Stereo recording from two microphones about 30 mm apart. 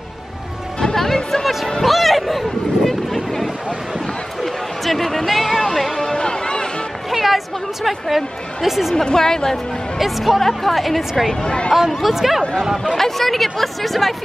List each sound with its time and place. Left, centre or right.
0.9 s music: centre
1.8 s a sound: centre
4.4 s music: centre
6.1 s music: left
7.1 s a sound: centre
8.6 s speech: centre
8.9 s a woman's voice: centre
9.9 s speech: centre
11.4 s speech: left
12.0 s speech: centre
12.9 s speech: centre